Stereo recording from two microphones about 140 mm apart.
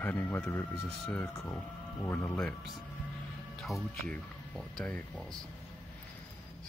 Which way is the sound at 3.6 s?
Centre (ahead or behind).